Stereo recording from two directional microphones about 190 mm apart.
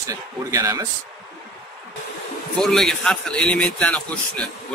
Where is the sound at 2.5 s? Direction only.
5° left (ahead or behind).